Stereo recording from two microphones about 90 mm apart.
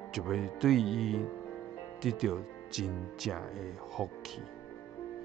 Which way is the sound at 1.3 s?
25° left (ahead or behind).